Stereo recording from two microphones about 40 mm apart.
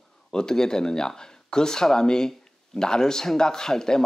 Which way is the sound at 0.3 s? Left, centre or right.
Centre.